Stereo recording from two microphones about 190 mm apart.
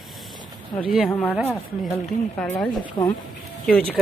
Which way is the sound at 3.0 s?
25° left (ahead or behind).